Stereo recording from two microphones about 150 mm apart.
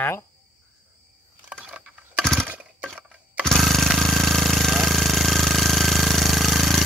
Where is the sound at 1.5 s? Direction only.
10° right (ahead or behind).